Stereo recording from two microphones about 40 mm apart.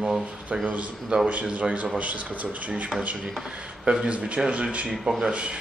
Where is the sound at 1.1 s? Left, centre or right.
Right.